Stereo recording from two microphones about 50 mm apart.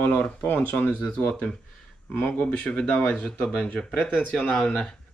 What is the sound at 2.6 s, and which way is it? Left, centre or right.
Speech, centre.